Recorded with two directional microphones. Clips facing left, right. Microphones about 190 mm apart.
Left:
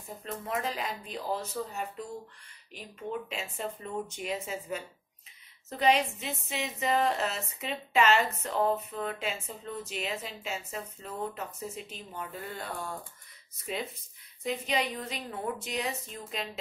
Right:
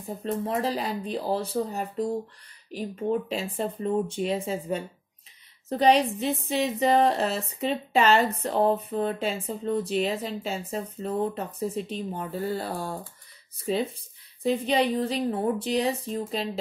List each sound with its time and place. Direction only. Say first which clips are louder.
0.2 s a woman's voice: right 7 dB; 30° right (ahead or behind)